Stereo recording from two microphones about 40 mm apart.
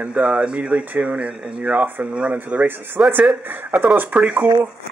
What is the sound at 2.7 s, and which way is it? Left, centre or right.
Speech, right.